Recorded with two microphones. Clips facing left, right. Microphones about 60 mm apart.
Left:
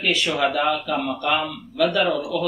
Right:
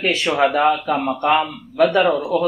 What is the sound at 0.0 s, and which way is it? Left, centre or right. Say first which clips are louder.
Speech: right 4 dB; right.